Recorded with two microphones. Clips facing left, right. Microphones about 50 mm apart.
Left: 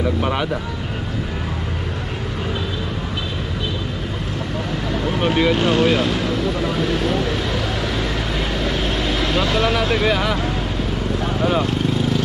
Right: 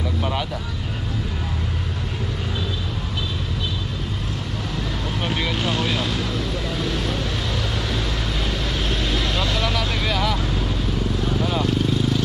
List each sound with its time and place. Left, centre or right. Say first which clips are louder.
0.2 s vehicle: left 4 dB; left
5.1 s speech: left 8 dB; centre
5.6 s vehicle: left 7 dB; left
8.8 s speech: left 3 dB; left
11.2 s vehicle: left 4 dB; left